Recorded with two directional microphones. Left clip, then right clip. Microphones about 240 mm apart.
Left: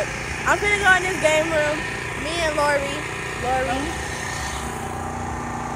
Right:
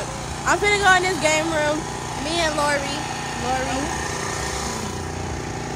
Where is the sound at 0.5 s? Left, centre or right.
Centre.